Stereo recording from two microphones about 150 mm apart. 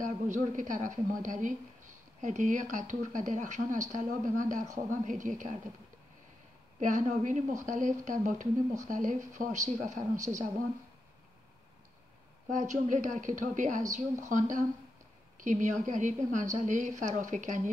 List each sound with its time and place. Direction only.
0.0 s speech: 55° right (ahead or behind)
6.8 s speech: 55° right (ahead or behind)
12.5 s speech: 55° right (ahead or behind)